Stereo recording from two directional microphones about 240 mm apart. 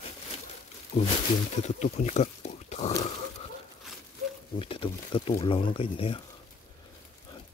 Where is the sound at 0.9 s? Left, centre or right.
Left.